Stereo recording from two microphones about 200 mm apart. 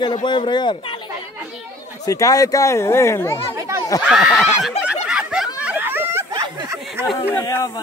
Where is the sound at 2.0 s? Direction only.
15° left (ahead or behind).